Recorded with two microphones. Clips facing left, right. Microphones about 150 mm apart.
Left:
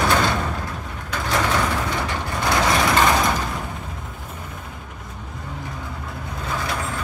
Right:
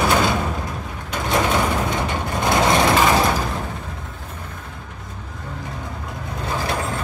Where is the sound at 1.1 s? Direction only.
20° right (ahead or behind).